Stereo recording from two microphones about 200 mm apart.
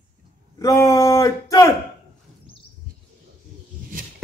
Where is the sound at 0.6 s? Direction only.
15° left (ahead or behind).